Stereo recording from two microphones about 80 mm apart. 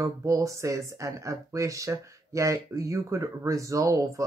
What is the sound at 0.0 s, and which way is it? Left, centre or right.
Speech, right.